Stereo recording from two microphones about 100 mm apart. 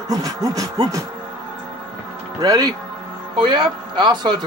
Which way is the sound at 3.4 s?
50° right (ahead or behind).